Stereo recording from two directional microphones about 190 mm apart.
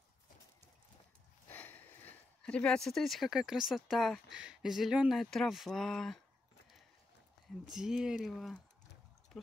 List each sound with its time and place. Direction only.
1.5 s speech: 10° left (ahead or behind)
7.7 s speech: 5° right (ahead or behind)